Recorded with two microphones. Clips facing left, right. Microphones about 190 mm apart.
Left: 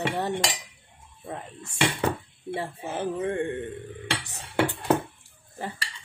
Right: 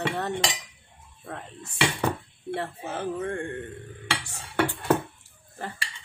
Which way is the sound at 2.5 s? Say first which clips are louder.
Even; 15° left (ahead or behind).